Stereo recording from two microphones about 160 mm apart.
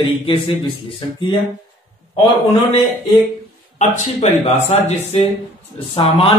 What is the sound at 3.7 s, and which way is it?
Speech, 45° left (ahead or behind).